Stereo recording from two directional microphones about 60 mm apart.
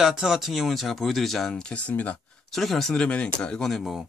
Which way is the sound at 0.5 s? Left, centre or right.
Centre.